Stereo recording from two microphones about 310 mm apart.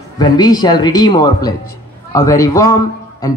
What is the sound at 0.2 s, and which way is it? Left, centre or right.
A man's voice, centre.